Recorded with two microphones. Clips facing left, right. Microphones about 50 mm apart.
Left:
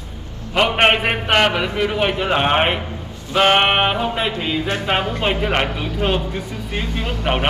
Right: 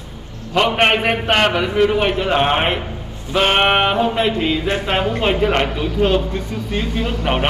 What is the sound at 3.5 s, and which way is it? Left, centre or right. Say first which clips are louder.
Male singing: right 1 dB; centre.